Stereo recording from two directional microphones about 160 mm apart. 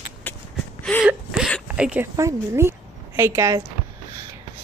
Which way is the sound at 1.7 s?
10° right (ahead or behind).